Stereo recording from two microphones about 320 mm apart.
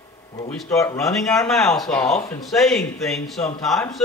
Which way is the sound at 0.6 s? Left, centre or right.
Centre.